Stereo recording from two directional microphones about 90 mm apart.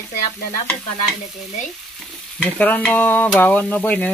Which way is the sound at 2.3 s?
15° left (ahead or behind).